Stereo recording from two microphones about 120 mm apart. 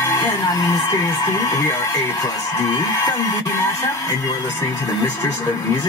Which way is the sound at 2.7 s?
25° left (ahead or behind).